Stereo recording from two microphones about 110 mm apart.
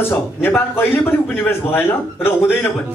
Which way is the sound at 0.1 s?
20° left (ahead or behind).